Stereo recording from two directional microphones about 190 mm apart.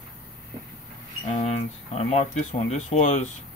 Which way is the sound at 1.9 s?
35° left (ahead or behind).